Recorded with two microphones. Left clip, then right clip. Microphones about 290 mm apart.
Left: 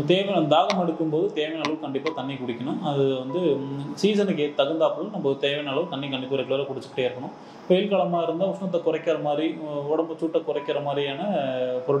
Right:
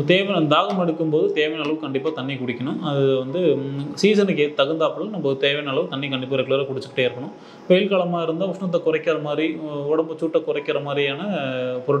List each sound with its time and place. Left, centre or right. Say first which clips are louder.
0.0 s a man's voice: right 3 dB; right